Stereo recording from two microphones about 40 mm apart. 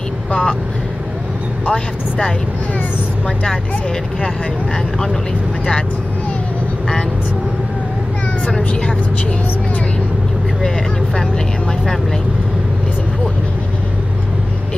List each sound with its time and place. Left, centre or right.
1.7 s speech: left
8.5 s speech: centre
11.1 s speech: centre